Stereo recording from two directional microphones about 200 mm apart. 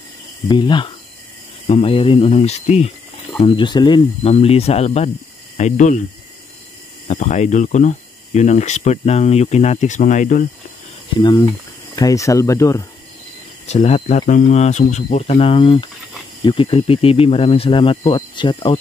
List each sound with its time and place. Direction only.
0.5 s speech: 25° left (ahead or behind); by 6.0 s 40° left (ahead or behind)
7.1 s speech: 35° left (ahead or behind)
11.1 s speech: 20° left (ahead or behind)
13.7 s speech: 30° left (ahead or behind)